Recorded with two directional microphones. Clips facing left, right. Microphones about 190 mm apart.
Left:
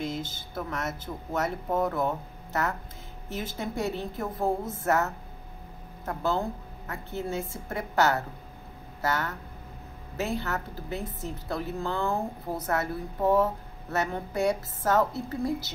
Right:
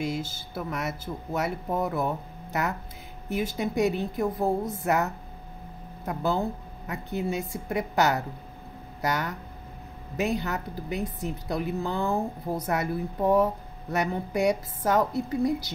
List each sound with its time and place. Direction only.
0.0 s a woman's voice: 10° right (ahead or behind)